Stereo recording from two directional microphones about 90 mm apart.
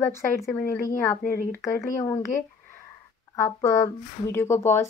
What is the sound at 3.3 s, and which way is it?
A woman's voice, 35° left (ahead or behind).